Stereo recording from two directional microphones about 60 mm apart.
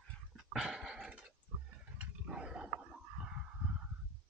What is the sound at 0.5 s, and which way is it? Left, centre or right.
Dog, centre.